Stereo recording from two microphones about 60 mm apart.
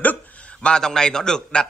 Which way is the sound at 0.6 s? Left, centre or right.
Centre.